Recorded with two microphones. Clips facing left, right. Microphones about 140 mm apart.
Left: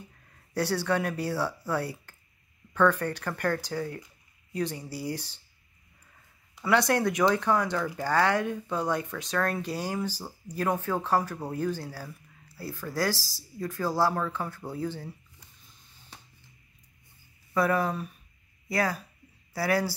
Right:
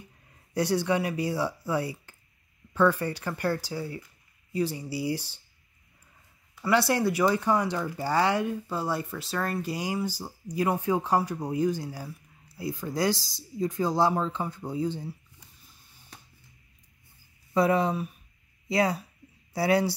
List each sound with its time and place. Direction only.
0.6 s speech: 15° right (ahead or behind)
6.6 s speech: 5° right (ahead or behind)
17.6 s speech: 20° right (ahead or behind)